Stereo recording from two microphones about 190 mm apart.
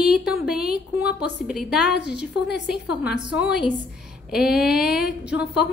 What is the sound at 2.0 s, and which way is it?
Speech, 65° left (ahead or behind).